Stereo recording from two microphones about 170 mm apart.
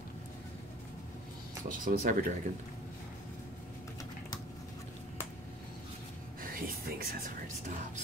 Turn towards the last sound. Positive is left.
turn(degrees=-60)  # may be behind; listen again after turning